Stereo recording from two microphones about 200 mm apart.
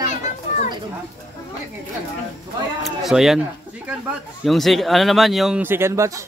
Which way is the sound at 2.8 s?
Centre (ahead or behind).